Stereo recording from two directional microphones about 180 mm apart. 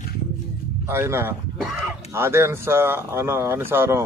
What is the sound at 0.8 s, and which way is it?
A man's voice, 15° right (ahead or behind).